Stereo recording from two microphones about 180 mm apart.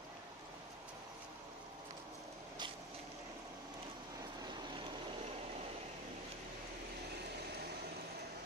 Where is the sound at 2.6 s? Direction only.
25° right (ahead or behind).